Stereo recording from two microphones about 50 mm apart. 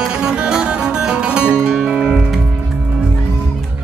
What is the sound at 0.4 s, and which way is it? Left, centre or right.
Music, centre.